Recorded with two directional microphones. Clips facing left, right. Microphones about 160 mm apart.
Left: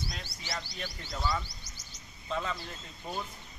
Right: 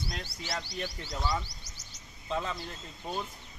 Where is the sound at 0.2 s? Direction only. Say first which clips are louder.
Right 2 dB; 65° right (ahead or behind).